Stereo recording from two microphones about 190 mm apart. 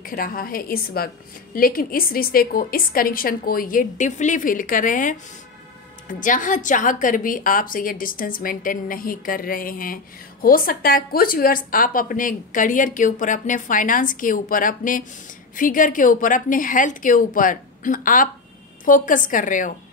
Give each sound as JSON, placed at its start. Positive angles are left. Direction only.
{"t": 0.0, "sound": "a woman's voice", "side_deg": 50}
{"t": 6.2, "sound": "a woman's voice", "side_deg": 45}